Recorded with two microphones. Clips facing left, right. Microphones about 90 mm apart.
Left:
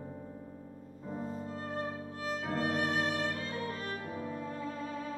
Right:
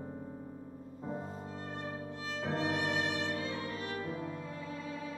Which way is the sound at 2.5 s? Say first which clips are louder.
Left 1 dB; 45° left (ahead or behind).